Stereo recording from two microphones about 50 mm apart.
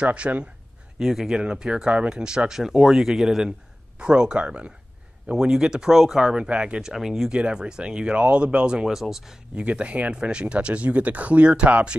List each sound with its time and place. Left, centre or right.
0.0 s speech: right
0.9 s speech: centre
4.0 s speech: centre
6.8 s speech: centre
8.8 s speech: centre
9.6 s speech: right